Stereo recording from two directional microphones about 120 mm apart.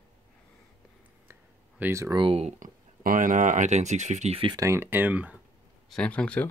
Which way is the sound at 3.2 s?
90° right.